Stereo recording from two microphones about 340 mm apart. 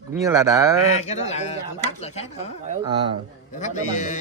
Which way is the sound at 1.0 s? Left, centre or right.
Centre.